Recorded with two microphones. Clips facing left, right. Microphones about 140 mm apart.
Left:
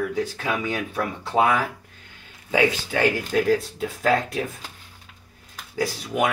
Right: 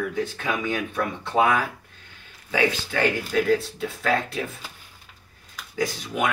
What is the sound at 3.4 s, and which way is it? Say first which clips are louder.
Speech: left 1 dB; 35° left (ahead or behind).